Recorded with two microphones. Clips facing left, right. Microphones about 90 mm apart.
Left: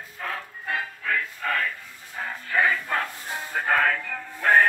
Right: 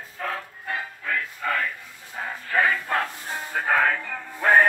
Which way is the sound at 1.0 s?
10° right (ahead or behind).